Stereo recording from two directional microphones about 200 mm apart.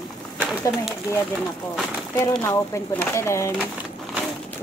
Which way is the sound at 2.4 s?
10° left (ahead or behind).